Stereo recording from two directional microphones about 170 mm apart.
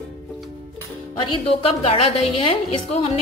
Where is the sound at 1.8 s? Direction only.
35° left (ahead or behind).